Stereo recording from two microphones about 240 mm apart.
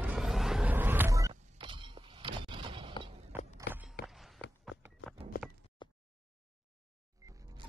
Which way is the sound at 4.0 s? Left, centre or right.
Left.